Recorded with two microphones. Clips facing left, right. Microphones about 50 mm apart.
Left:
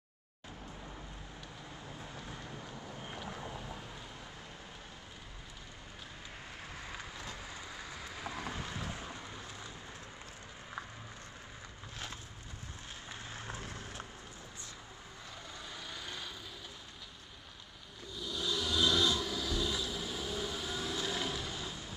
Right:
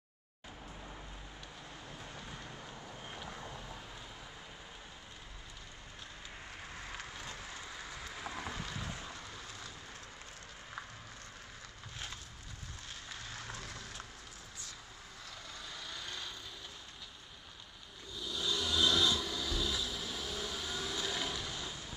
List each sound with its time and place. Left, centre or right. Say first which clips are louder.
1.9 s vehicle: left 2 dB; centre
6.7 s vehicle: even; centre
13.1 s a sound: left 1 dB; left
15.7 s vehicle: even; centre
18.1 s vehicle: left 1 dB; centre